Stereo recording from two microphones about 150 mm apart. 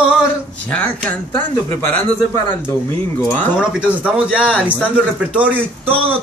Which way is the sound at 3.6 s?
10° right (ahead or behind).